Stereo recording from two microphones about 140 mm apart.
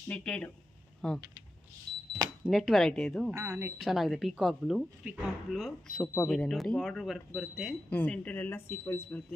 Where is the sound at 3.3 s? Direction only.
20° right (ahead or behind).